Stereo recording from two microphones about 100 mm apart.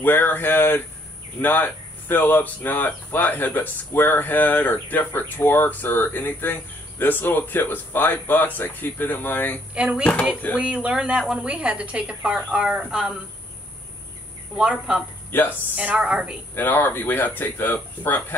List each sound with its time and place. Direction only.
0.0 s speech: 20° left (ahead or behind)
9.8 s a woman's voice: 10° right (ahead or behind)
14.6 s a woman's voice: 10° right (ahead or behind)
16.5 s speech: 20° left (ahead or behind)